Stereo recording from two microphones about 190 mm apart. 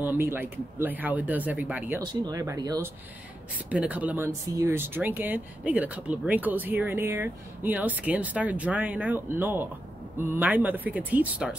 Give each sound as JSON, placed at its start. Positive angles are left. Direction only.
{"t": 0.0, "sound": "speech", "side_deg": -10}
{"t": 3.7, "sound": "speech", "side_deg": -10}